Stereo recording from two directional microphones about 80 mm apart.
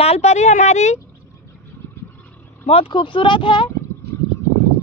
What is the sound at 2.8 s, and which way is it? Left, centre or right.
Speech, left.